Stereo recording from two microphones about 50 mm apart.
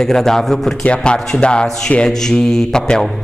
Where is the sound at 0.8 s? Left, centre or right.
Centre.